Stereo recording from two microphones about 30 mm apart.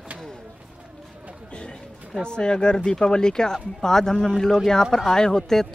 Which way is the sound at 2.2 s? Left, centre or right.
Left.